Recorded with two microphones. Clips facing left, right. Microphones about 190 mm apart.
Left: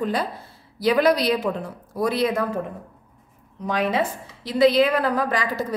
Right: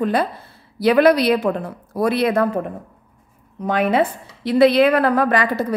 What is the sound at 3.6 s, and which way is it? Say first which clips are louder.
A woman's voice: right 5 dB; 55° right (ahead or behind).